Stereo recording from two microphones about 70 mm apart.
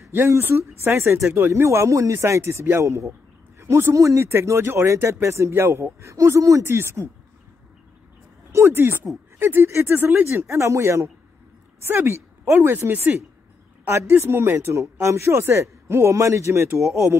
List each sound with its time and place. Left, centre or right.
0.4 s speech: right
1.5 s speech: right
8.5 s a woman's voice: right